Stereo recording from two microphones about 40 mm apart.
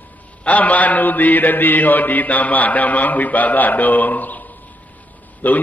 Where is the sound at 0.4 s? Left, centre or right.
Left.